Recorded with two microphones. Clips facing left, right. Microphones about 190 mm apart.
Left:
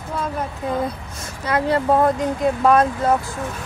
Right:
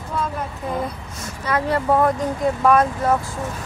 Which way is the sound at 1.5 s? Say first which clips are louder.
Left 1 dB; 25° left (ahead or behind).